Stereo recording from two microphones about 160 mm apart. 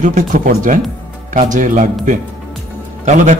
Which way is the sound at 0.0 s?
50° right (ahead or behind).